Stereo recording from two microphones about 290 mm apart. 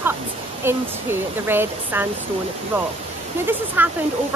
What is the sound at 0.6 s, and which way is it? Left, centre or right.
Speech, centre.